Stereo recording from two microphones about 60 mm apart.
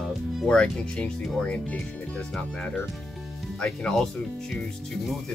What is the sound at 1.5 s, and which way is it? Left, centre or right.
Speech, centre.